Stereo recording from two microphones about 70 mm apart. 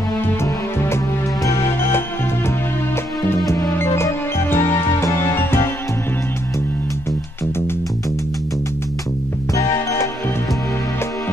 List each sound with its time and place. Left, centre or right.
1.4 s music: left
3.7 s music: left